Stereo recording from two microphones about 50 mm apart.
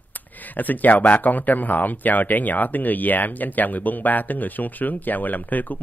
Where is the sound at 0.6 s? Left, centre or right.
Left.